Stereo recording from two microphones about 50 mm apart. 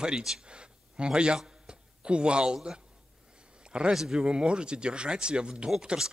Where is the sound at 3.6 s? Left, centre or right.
Centre.